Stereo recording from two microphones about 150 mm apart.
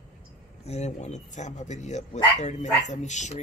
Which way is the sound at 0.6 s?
50° left (ahead or behind).